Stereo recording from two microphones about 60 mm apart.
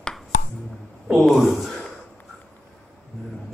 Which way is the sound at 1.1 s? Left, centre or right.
Centre.